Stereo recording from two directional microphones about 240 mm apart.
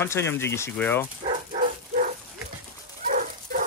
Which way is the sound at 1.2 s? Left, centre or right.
Right.